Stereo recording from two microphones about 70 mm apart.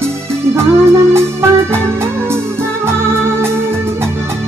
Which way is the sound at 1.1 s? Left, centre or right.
Right.